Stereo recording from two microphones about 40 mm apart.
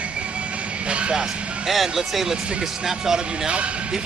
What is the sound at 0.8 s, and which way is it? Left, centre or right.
Vehicle, right.